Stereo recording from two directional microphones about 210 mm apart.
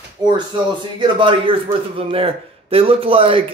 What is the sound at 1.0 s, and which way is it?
Speech, 25° right (ahead or behind).